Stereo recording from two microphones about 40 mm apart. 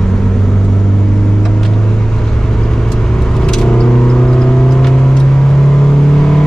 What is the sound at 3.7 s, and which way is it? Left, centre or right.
Vehicle, centre.